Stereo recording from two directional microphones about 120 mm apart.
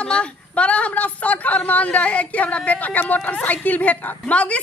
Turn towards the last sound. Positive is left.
turn(degrees=10)  # may be behind; listen again after turning